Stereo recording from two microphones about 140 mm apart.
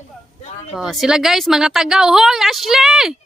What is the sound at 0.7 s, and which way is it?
A woman's voice, centre (ahead or behind).